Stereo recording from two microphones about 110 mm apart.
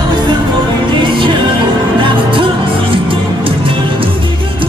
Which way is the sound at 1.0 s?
50° right (ahead or behind).